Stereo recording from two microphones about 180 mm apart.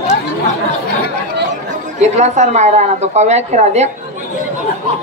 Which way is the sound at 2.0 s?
40° right (ahead or behind).